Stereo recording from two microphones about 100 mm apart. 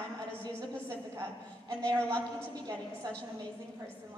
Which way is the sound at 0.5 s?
30° right (ahead or behind).